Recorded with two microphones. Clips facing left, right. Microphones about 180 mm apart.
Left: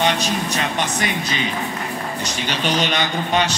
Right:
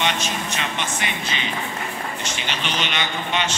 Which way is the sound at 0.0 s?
35° left (ahead or behind).